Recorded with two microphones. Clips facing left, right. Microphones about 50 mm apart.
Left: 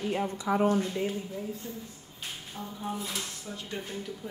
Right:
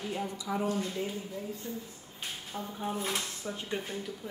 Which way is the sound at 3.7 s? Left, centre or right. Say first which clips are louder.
Left 1 dB; centre.